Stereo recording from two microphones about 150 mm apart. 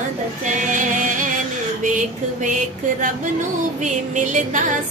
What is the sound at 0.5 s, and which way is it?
Music, 60° right (ahead or behind).